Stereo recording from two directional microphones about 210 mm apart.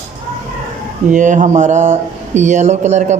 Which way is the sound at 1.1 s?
35° right (ahead or behind).